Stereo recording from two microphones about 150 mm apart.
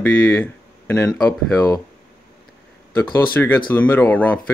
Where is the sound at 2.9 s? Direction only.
15° left (ahead or behind).